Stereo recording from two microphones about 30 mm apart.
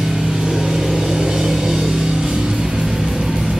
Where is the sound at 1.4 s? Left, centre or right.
Centre.